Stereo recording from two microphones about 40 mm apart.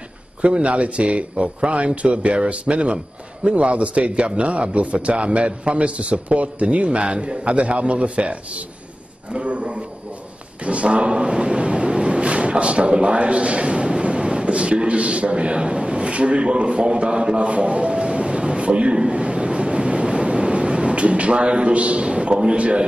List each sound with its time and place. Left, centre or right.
0.4 s a man's voice: right
10.6 s a sound: right
22.6 s a man's voice: right